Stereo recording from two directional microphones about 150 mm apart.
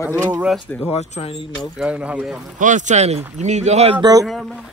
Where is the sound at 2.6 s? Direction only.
55° right (ahead or behind).